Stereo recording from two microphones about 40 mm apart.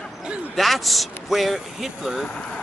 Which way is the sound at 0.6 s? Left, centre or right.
Centre.